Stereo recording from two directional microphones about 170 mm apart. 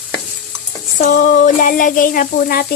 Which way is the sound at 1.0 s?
50° left (ahead or behind).